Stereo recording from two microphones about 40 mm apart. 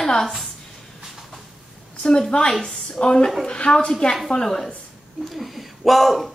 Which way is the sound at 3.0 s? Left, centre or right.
Left.